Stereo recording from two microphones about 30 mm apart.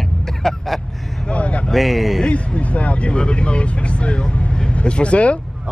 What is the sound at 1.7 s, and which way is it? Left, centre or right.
Speech, centre.